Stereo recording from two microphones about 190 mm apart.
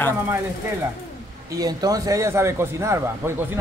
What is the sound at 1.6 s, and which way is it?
A man's voice, 20° right (ahead or behind).